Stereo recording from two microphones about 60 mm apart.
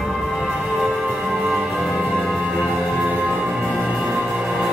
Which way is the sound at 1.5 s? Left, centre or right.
Centre.